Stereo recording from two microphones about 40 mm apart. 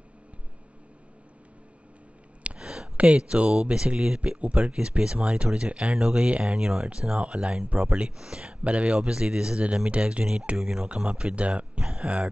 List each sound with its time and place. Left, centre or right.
2.6 s a sound: centre
3.0 s speech: right
4.2 s speech: right
5.9 s speech: centre
9.8 s speech: right
10.6 s speech: centre; by 11.8 s right
11.8 s speech: centre